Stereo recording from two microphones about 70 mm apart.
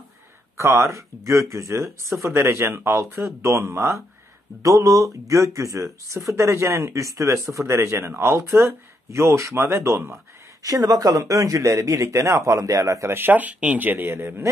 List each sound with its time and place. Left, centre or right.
0.6 s speech: right
4.6 s speech: right
10.6 s speech: right
13.1 s speech: right